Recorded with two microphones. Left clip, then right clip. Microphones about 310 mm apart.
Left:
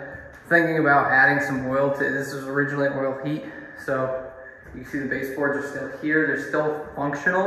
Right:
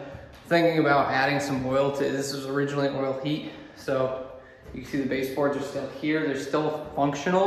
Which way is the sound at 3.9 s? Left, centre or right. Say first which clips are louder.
Left 1 dB; centre.